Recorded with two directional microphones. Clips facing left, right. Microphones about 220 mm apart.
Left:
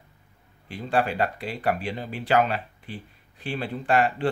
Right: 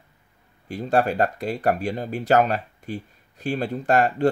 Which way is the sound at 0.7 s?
45° right (ahead or behind).